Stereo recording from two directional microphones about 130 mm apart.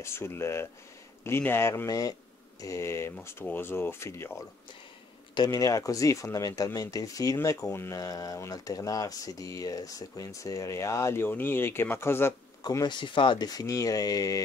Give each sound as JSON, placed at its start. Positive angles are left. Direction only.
{"t": 0.0, "sound": "speech", "side_deg": 20}
{"t": 5.3, "sound": "speech", "side_deg": 30}
{"t": 12.6, "sound": "speech", "side_deg": 35}